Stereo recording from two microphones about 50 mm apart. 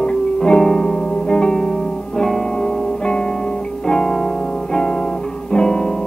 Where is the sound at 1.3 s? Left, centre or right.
Centre.